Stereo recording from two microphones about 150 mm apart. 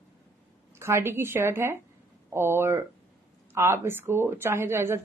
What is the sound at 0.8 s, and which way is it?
Speech, 15° right (ahead or behind).